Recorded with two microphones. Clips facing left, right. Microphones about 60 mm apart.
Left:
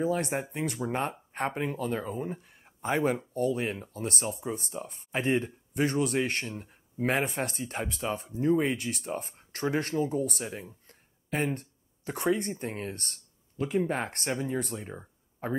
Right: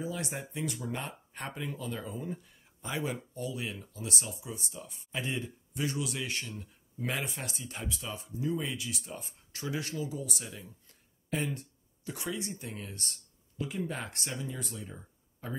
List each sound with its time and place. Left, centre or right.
0.0 s speech: left